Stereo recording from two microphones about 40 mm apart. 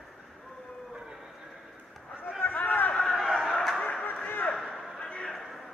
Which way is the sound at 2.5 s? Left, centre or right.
Left.